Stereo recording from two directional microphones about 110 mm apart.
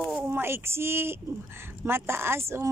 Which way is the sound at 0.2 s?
20° right (ahead or behind).